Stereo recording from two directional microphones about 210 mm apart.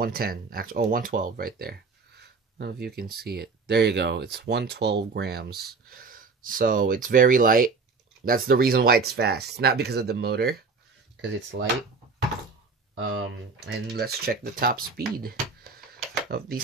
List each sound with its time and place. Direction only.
0.0 s speech: 45° right (ahead or behind)
11.5 s speech: 50° right (ahead or behind)
13.7 s speech: 50° right (ahead or behind)